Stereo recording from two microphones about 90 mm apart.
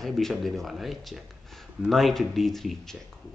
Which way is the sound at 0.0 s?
5° left (ahead or behind).